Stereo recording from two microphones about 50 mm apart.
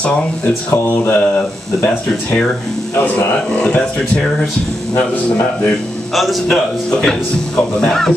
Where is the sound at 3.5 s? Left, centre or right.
Left.